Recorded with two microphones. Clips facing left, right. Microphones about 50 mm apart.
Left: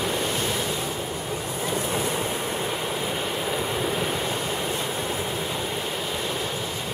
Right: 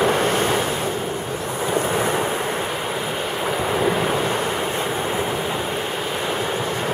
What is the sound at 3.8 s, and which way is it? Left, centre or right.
Waves, right.